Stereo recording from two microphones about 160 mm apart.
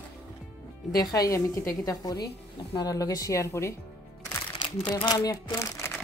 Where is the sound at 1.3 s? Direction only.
15° left (ahead or behind).